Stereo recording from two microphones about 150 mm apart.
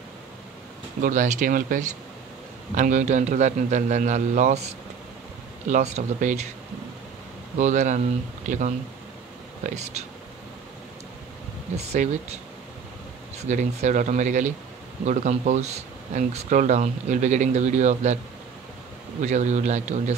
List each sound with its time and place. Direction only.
1.0 s speech: 60° right (ahead or behind)
7.5 s speech: 50° right (ahead or behind)
11.7 s speech: 45° right (ahead or behind)
13.4 s speech: 50° right (ahead or behind)
19.2 s speech: 50° right (ahead or behind)